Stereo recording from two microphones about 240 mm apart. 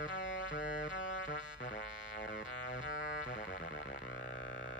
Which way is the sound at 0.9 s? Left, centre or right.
Left.